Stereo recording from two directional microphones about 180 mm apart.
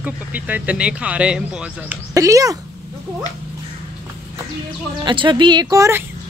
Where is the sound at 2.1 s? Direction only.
20° right (ahead or behind).